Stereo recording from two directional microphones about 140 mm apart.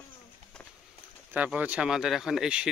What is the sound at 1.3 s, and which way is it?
Speech, 10° right (ahead or behind).